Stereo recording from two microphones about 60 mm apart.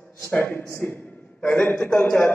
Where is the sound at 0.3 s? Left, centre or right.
Left.